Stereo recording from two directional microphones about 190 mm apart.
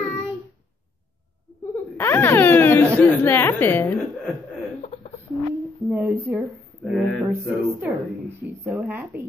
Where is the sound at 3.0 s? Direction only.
10° left (ahead or behind).